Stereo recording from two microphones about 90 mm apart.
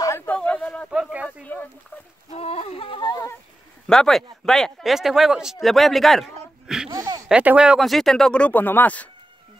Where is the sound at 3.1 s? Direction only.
35° left (ahead or behind).